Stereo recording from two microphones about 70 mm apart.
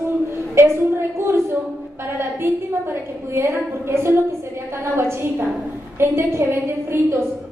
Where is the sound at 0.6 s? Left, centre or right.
Right.